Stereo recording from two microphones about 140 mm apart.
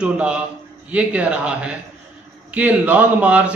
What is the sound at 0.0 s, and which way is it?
A man's voice, 10° right (ahead or behind).